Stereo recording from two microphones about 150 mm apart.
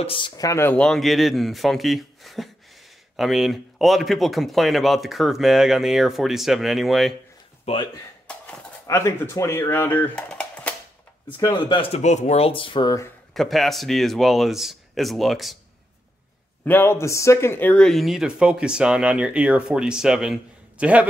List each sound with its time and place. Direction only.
0.0 s speech: 35° left (ahead or behind)
0.4 s speech: 20° left (ahead or behind)
0.7 s speech: centre (ahead or behind)
7.6 s speech: 35° left (ahead or behind)
8.8 s speech: 20° left (ahead or behind)
11.4 s speech: 35° left (ahead or behind)
13.3 s speech: centre (ahead or behind)
16.6 s speech: 15° left (ahead or behind); by 21.1 s 10° right (ahead or behind)